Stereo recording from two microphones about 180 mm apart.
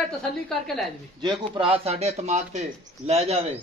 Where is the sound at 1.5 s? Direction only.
30° right (ahead or behind).